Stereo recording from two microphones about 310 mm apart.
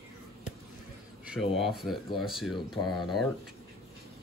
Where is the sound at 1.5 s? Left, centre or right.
Centre.